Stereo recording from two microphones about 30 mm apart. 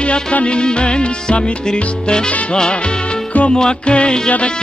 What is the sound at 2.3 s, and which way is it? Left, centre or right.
Music, left.